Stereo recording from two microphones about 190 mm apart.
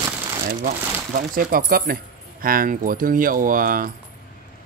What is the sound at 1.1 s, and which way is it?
Speech, 50° right (ahead or behind).